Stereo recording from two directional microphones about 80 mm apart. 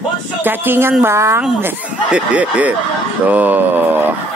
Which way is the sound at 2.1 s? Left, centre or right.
Centre.